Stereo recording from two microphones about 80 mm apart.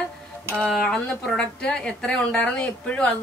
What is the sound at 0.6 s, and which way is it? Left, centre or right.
Speech, centre.